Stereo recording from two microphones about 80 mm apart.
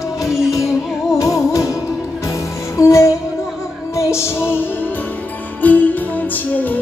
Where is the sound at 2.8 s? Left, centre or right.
Left.